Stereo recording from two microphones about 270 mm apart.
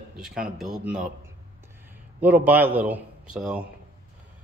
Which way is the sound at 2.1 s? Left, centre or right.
Centre.